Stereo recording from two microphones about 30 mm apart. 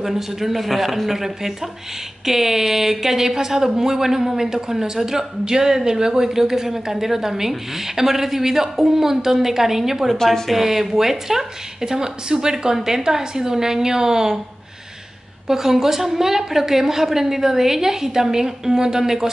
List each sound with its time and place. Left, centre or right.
0.0 s speech: centre
10.1 s speech: centre
10.5 s a woman's voice: centre
15.4 s speech: centre